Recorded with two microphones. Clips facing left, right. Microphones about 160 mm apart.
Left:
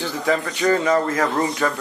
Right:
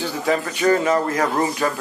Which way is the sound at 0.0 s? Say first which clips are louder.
Even; 15° right (ahead or behind).